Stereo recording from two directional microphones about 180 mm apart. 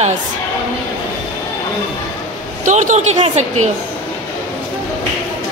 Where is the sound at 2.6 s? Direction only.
45° right (ahead or behind).